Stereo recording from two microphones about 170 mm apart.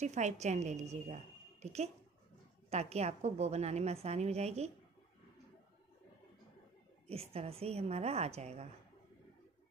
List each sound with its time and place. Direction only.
0.0 s a woman's voice: 45° right (ahead or behind)
7.1 s a woman's voice: 35° right (ahead or behind)